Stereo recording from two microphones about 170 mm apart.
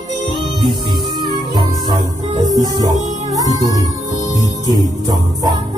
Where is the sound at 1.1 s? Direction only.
25° right (ahead or behind).